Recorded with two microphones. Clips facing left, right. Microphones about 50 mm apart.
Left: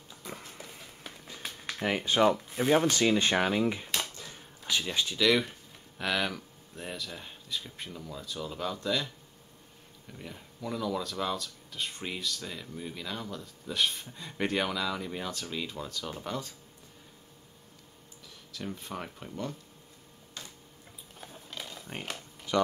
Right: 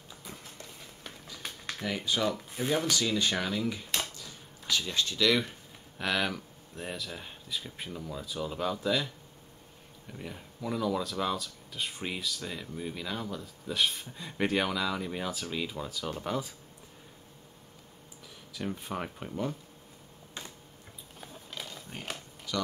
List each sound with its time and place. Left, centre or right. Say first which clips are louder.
0.4 s a sound: left 1 dB; centre
1.8 s speech: left 5 dB; left; by 9.1 s centre
10.1 s speech: right 3 dB; centre
18.5 s speech: right 3 dB; centre
21.2 s a sound: even; centre
22.5 s speech: left 6 dB; left